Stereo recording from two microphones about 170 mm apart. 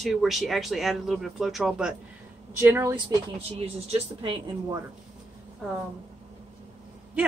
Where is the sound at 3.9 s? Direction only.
25° right (ahead or behind).